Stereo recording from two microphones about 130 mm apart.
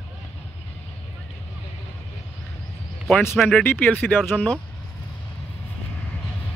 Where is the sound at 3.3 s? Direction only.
Centre (ahead or behind).